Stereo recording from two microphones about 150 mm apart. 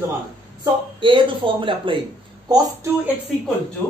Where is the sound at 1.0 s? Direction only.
35° right (ahead or behind).